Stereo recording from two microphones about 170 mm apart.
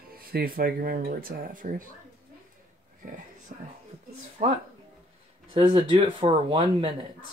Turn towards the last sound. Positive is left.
turn(degrees=-35)  # may be behind; listen again after turning